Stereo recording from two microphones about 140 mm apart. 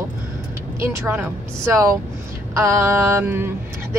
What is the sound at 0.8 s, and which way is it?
Speech, 20° right (ahead or behind).